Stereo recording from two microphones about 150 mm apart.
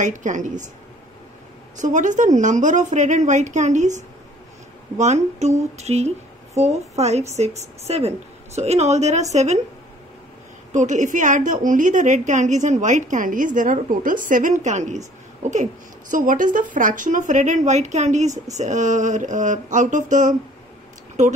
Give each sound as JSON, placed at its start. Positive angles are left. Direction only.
{"t": 0.0, "sound": "a woman's voice", "side_deg": -55}
{"t": 1.8, "sound": "a woman's voice", "side_deg": -55}
{"t": 10.7, "sound": "a woman's voice", "side_deg": -55}